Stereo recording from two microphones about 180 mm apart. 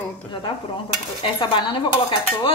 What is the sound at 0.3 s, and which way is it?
Dishes, 25° left (ahead or behind).